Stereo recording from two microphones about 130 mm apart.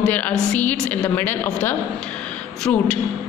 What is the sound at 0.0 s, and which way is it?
A woman's voice, 10° left (ahead or behind).